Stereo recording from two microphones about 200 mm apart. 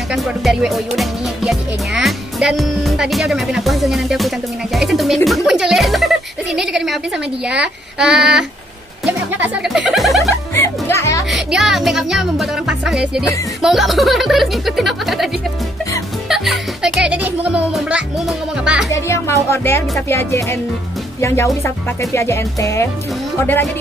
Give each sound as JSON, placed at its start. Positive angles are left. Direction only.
{"t": 0.1, "sound": "speech", "side_deg": 0}
{"t": 10.3, "sound": "music", "side_deg": 15}
{"t": 11.2, "sound": "speech", "side_deg": 0}
{"t": 16.3, "sound": "speech", "side_deg": 0}
{"t": 18.9, "sound": "speech", "side_deg": 15}
{"t": 21.6, "sound": "speech", "side_deg": 15}